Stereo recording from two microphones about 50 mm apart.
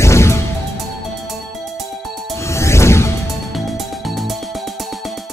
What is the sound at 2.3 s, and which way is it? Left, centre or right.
Music, left.